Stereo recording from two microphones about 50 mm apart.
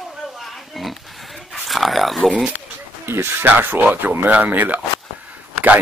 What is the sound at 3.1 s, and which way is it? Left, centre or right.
Speech, right.